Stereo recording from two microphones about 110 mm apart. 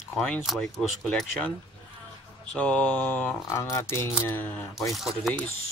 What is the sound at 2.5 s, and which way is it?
Speech, 10° left (ahead or behind).